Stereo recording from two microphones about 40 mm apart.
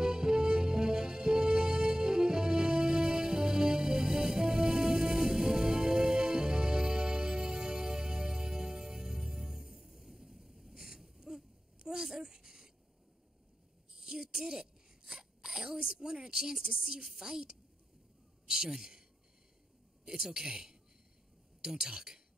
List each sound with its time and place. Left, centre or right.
0.0 s music: centre
13.9 s a sound: centre
16.7 s speech: centre
20.1 s speech: centre